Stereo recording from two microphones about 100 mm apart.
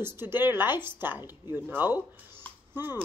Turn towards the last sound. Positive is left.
turn(degrees=-20)  # may be behind; listen again after turning